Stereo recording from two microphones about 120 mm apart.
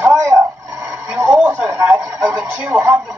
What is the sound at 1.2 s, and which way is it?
Radio, 20° right (ahead or behind).